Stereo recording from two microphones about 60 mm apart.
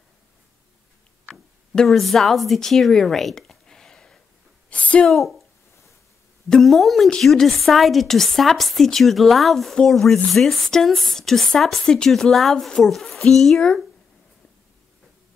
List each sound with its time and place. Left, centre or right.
1.8 s speech: centre
4.6 s a sound: left
5.0 s speech: centre
6.5 s a child's voice: centre